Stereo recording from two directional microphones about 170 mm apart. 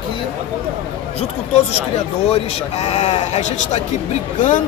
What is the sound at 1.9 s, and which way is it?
Speech, 40° left (ahead or behind).